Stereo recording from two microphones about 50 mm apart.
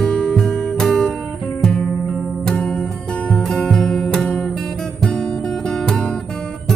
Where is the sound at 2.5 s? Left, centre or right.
Left.